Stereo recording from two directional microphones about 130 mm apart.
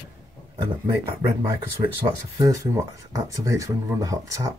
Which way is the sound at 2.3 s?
25° right (ahead or behind).